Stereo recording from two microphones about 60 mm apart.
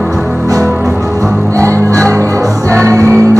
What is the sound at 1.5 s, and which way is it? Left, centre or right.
Music, right.